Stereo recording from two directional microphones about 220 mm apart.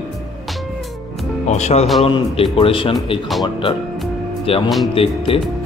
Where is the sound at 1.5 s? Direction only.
30° left (ahead or behind).